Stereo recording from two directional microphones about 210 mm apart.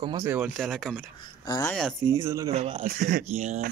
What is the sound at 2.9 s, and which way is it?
Speech, 40° right (ahead or behind).